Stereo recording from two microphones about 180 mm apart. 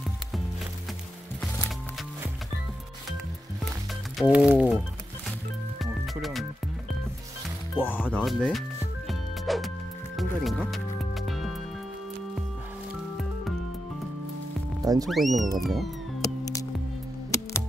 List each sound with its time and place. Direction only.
4.2 s speech: 5° right (ahead or behind)
5.8 s music: centre (ahead or behind)
7.7 s music: 10° left (ahead or behind)
14.8 s music: 20° right (ahead or behind)
15.0 s speech: centre (ahead or behind)
16.2 s music: 20° left (ahead or behind)